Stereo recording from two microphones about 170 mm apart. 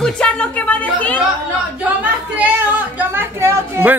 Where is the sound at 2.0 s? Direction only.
10° right (ahead or behind).